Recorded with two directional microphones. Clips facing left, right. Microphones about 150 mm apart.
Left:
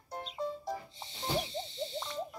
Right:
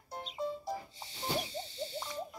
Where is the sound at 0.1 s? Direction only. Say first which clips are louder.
Even; 5° right (ahead or behind).